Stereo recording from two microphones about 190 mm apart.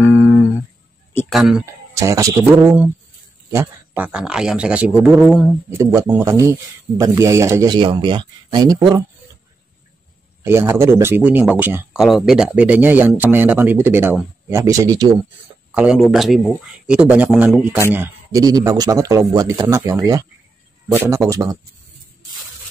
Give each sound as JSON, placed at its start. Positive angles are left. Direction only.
{"t": 0.0, "sound": "humming", "side_deg": 15}
{"t": 1.3, "sound": "speech", "side_deg": 0}
{"t": 2.0, "sound": "speech", "side_deg": -15}
{"t": 5.7, "sound": "speech", "side_deg": -15}
{"t": 10.4, "sound": "speech", "side_deg": -15}
{"t": 15.7, "sound": "speech", "side_deg": -5}